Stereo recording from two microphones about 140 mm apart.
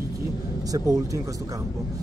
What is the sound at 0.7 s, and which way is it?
Speech, 30° right (ahead or behind).